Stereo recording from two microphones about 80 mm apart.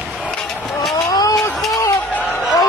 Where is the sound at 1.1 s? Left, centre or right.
Left.